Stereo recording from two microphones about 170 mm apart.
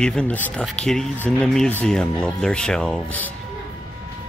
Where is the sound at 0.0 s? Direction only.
5° left (ahead or behind).